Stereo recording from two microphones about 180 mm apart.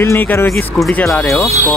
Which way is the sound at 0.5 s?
Centre (ahead or behind).